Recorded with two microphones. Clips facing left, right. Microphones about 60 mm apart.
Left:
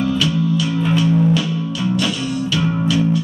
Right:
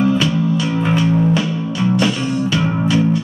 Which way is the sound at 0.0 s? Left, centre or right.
Right.